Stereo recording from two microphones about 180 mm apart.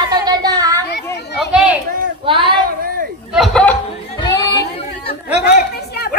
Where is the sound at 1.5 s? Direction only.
5° right (ahead or behind).